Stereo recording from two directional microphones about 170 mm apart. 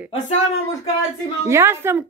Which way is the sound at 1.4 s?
15° right (ahead or behind).